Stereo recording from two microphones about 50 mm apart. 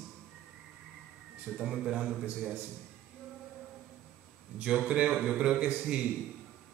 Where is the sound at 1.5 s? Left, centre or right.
Centre.